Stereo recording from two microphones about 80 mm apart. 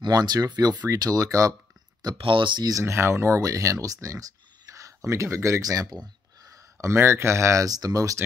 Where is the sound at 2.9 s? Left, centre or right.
Right.